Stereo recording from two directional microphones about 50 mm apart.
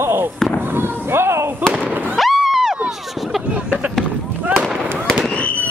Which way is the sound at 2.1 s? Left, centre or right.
Centre.